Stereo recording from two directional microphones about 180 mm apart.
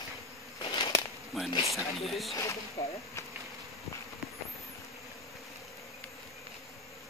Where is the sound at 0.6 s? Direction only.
25° left (ahead or behind).